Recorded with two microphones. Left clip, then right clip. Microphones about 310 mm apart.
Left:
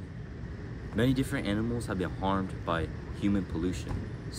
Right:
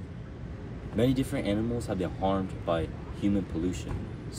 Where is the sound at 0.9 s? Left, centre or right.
Centre.